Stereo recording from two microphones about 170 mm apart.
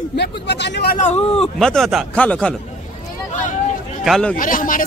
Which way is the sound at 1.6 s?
Centre (ahead or behind).